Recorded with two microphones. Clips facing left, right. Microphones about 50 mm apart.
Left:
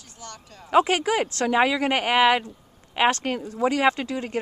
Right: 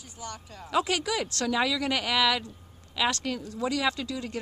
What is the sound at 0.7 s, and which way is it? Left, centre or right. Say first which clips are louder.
Speech: left 7 dB; left.